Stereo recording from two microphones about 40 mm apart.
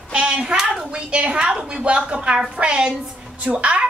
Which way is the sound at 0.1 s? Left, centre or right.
Right.